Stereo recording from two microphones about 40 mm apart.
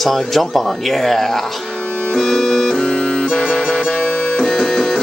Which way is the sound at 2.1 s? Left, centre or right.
Centre.